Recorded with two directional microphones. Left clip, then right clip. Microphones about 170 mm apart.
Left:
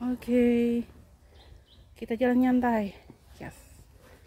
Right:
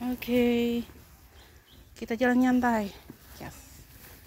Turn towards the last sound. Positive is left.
turn(degrees=30)  # may be behind; listen again after turning